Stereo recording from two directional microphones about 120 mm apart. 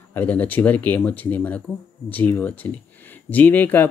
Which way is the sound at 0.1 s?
15° left (ahead or behind).